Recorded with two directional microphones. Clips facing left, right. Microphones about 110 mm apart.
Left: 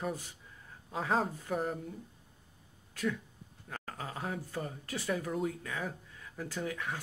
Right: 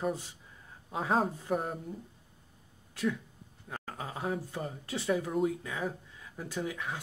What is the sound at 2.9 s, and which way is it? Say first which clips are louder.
Speech: right 2 dB; 20° right (ahead or behind).